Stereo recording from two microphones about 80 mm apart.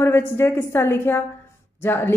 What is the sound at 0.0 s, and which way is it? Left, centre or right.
A woman's voice, left.